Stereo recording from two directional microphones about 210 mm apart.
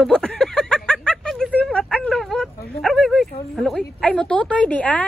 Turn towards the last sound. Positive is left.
turn(degrees=5)  # may be behind; listen again after turning